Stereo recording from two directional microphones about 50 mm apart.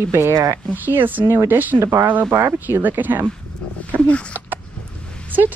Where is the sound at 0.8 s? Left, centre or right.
Right.